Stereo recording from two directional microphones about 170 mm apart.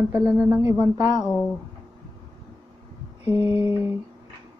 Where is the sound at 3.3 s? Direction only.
35° left (ahead or behind).